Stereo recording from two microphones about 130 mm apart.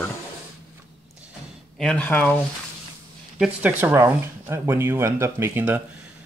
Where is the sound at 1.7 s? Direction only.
10° left (ahead or behind).